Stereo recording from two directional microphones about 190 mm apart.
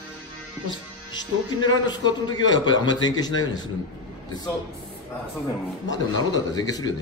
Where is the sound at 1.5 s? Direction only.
20° left (ahead or behind).